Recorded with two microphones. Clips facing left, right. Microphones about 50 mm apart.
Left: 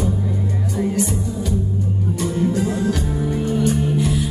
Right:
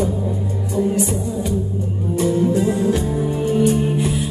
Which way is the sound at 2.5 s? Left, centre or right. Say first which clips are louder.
Right 3 dB; right.